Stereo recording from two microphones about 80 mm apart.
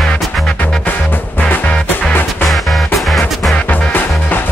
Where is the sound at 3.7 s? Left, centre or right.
Left.